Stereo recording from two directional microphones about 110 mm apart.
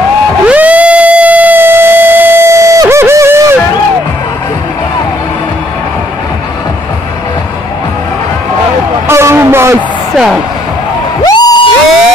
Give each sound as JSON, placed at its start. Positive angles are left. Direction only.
{"t": 0.5, "sound": "music", "side_deg": -15}
{"t": 9.0, "sound": "a sound", "side_deg": -25}
{"t": 10.1, "sound": "music", "side_deg": -5}
{"t": 11.2, "sound": "music", "side_deg": 35}